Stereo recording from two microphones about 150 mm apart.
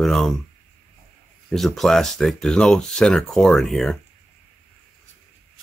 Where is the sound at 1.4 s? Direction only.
Centre (ahead or behind).